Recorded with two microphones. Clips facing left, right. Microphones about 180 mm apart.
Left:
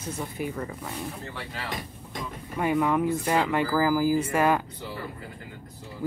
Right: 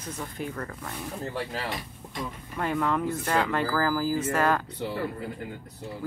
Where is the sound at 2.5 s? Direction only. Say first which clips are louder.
Left 3 dB; 10° left (ahead or behind).